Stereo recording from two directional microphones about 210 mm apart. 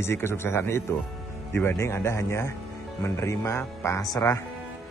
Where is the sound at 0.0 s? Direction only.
10° left (ahead or behind).